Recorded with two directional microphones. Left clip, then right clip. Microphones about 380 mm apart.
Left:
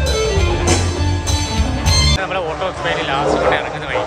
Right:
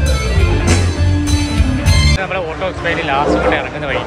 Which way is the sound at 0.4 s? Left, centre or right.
Left.